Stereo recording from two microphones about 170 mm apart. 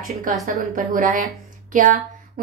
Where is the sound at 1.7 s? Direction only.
50° right (ahead or behind).